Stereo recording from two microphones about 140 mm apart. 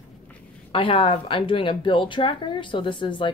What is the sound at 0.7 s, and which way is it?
Speech, 40° left (ahead or behind).